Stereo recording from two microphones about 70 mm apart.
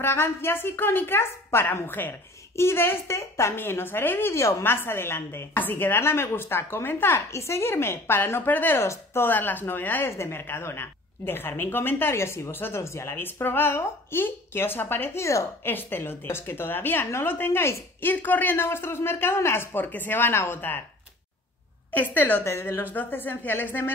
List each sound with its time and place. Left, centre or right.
0.0 s a woman's voice: left
18.1 s a woman's voice: left
21.9 s speech: left
22.4 s a woman's voice: left
22.8 s speech: left